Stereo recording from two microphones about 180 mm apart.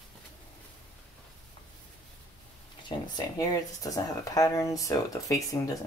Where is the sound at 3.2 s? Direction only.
20° left (ahead or behind).